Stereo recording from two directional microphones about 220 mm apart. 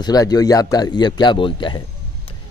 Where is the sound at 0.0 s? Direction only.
15° left (ahead or behind).